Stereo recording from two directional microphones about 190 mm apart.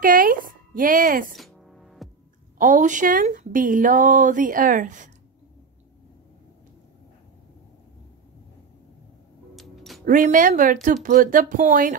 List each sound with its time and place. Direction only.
0.0 s a sound: 45° right (ahead or behind)
1.3 s music: centre (ahead or behind)
2.6 s speech: 40° right (ahead or behind)
9.6 s music: centre (ahead or behind)
10.0 s speech: 45° right (ahead or behind)